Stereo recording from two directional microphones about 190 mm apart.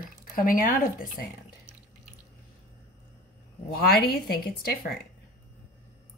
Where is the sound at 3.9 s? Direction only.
55° left (ahead or behind).